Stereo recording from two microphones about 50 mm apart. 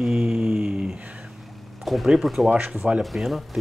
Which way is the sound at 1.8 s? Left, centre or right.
Centre.